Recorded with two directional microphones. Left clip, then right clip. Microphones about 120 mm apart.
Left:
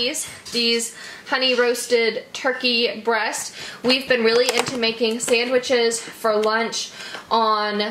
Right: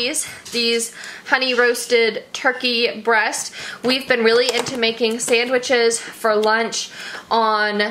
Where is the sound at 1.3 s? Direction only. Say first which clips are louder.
Right 2 dB; 40° right (ahead or behind).